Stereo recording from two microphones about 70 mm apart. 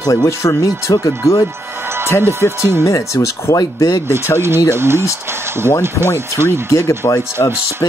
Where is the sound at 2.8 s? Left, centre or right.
Left.